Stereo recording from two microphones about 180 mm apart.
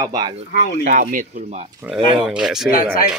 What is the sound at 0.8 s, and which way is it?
Speech, 45° right (ahead or behind).